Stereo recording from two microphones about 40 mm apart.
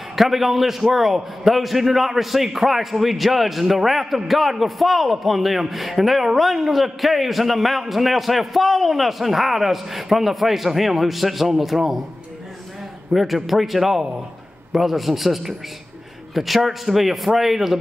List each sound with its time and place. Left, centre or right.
0.1 s a man's voice: centre
13.1 s a man's voice: centre